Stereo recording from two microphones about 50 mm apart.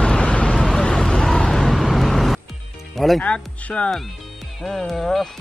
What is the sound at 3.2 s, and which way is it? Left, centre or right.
Music, left.